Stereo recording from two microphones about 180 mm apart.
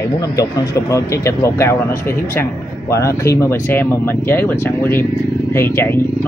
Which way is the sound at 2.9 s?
15° left (ahead or behind).